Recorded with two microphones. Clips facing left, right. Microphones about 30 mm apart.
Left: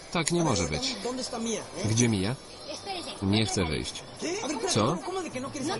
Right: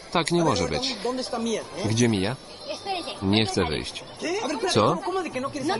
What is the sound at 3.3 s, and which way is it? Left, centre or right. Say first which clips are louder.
Speech: right 4 dB; right.